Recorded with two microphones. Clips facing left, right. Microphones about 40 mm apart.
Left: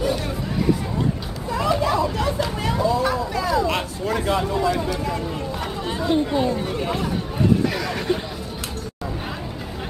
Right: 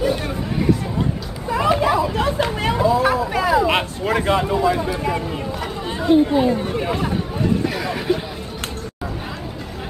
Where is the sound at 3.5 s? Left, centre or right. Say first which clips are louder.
Right 4 dB; right.